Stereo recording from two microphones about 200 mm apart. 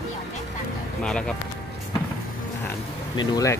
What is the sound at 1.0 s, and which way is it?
Speech, 5° left (ahead or behind).